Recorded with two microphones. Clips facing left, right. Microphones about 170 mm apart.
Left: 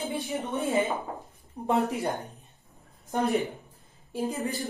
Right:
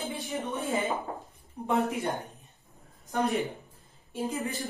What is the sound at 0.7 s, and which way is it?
Speech, centre (ahead or behind).